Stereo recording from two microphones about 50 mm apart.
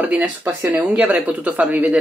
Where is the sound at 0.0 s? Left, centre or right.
Right.